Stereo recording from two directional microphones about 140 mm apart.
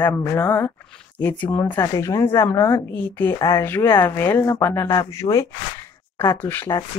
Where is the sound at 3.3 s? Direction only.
30° left (ahead or behind).